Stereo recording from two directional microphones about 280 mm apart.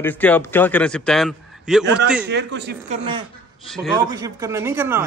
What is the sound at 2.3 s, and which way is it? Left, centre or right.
Speech, right.